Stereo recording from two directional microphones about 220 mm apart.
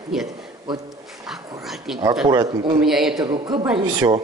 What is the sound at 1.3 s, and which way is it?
Dog, centre (ahead or behind).